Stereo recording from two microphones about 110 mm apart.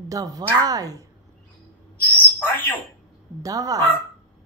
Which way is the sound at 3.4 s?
30° right (ahead or behind).